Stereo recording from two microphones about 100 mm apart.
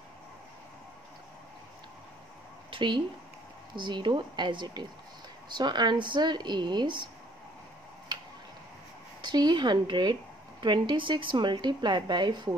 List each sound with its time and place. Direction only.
2.7 s a woman's voice: 55° right (ahead or behind)
8.1 s tick-tock: 50° right (ahead or behind)
9.2 s a woman's voice: 45° right (ahead or behind)